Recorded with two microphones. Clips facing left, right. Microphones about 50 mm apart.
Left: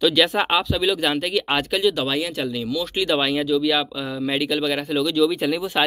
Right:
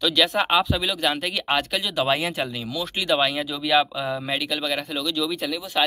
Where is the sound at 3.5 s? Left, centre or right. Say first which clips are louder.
Left 1 dB; centre.